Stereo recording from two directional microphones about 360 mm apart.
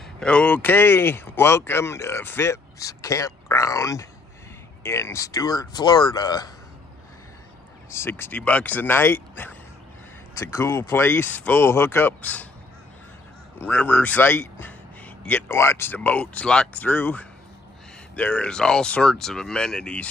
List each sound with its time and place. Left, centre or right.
0.2 s speech: centre
7.9 s speech: centre
13.6 s speech: centre